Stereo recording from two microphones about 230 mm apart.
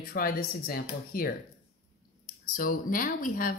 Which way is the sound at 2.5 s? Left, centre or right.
Left.